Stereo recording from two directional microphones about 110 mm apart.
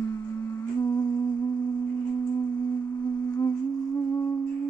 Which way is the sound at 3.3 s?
30° left (ahead or behind).